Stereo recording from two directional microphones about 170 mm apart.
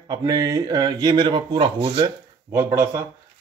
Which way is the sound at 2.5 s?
15° right (ahead or behind).